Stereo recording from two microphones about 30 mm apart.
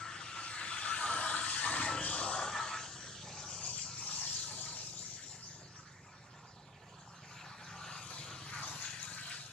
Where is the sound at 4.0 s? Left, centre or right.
Left.